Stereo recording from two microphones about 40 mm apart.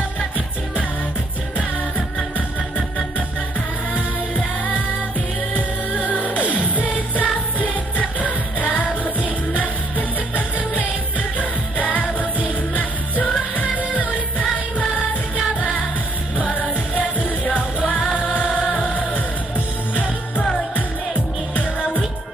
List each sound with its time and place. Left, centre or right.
1.6 s music: left
6.0 s music: left
17.8 s music: left
18.3 s music: left
21.5 s music: left